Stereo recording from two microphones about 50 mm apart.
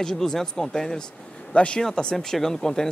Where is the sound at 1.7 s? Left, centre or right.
Centre.